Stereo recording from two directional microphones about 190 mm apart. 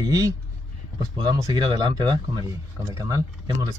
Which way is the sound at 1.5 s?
20° right (ahead or behind).